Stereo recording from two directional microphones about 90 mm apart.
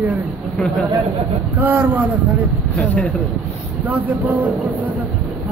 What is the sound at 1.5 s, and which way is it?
Speech, 20° right (ahead or behind).